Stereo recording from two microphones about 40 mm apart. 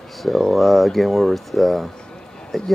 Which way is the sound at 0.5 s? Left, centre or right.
Centre.